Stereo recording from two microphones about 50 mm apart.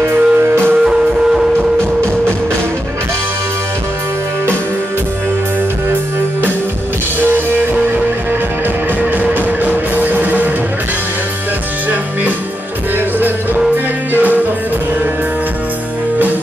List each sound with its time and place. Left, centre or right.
0.0 s music: right
0.8 s music: centre
7.2 s music: right
9.1 s music: right
11.9 s music: right